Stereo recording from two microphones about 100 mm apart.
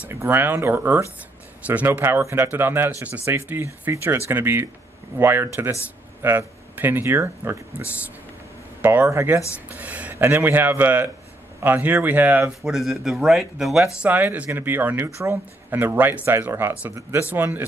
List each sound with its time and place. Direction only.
0.1 s speech: 25° right (ahead or behind)
9.0 s speech: 25° right (ahead or behind)
9.7 s speech: 15° right (ahead or behind)
10.1 s speech: 25° right (ahead or behind)
12.6 s speech: centre (ahead or behind)
14.0 s speech: 15° right (ahead or behind)